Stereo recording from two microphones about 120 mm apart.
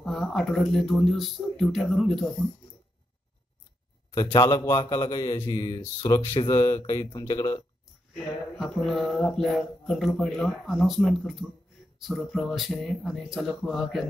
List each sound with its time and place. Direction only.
0.0 s speech: centre (ahead or behind)
4.1 s a man's voice: 35° left (ahead or behind)
8.5 s speech: centre (ahead or behind)